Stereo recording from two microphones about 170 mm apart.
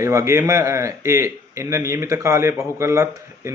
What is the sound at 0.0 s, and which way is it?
A man's voice, 15° right (ahead or behind).